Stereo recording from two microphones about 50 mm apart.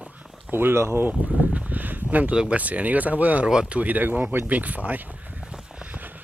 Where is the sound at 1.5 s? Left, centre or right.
Right.